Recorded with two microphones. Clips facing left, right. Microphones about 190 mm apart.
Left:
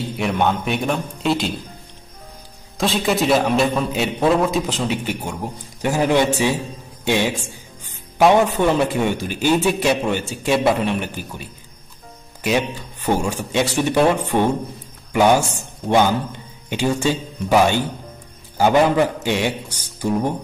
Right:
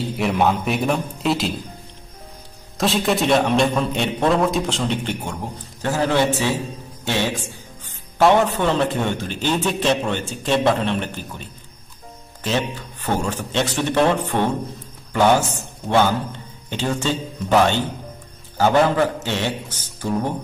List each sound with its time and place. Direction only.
0.2 s a man's voice: centre (ahead or behind)
2.8 s a man's voice: centre (ahead or behind)
12.4 s a man's voice: 10° left (ahead or behind)